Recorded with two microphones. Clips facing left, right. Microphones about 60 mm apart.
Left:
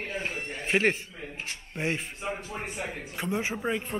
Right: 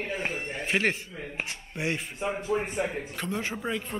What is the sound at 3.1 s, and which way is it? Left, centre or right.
Speech, centre.